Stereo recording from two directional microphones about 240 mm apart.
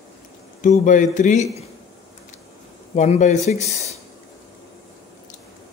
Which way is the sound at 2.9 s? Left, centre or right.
Left.